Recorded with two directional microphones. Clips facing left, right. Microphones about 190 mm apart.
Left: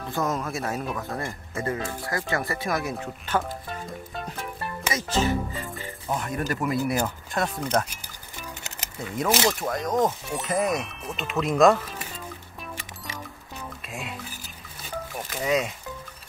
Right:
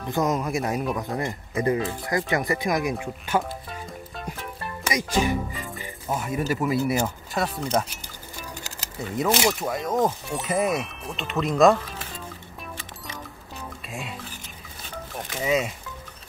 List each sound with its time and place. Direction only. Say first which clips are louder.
0.1 s speech: right 4 dB; 15° right (ahead or behind)
4.1 s music: left 1 dB; centre (ahead or behind)
4.8 s speech: right 1 dB; 15° right (ahead or behind)
9.4 s speech: right 1 dB; 5° right (ahead or behind)
13.8 s stir: right 1 dB; centre (ahead or behind)
15.1 s speech: right 1 dB; centre (ahead or behind)